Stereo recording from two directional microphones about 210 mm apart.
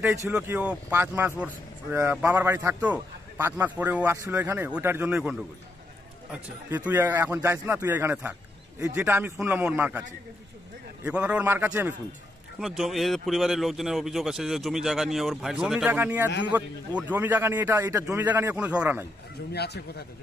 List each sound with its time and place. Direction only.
0.3 s a man's voice: 5° right (ahead or behind)
6.9 s a man's voice: 10° right (ahead or behind)
11.1 s a man's voice: 5° right (ahead or behind)
19.5 s speech: 50° left (ahead or behind)